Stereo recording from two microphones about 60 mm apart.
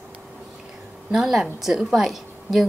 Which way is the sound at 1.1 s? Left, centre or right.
Centre.